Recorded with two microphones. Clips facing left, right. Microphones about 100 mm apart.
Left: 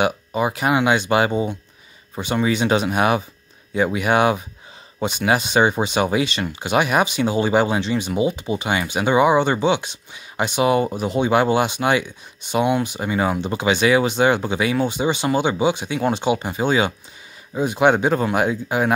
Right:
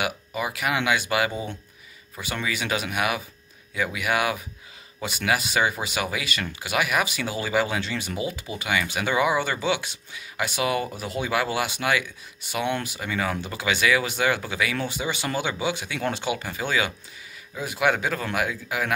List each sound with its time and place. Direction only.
0.0 s speech: 30° left (ahead or behind)